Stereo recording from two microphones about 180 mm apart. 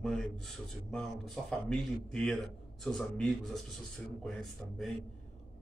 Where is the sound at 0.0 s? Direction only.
5° left (ahead or behind).